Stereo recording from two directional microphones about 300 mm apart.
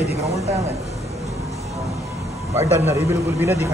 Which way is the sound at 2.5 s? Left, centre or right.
Centre.